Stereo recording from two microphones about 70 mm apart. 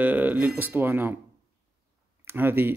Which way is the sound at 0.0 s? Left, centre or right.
Right.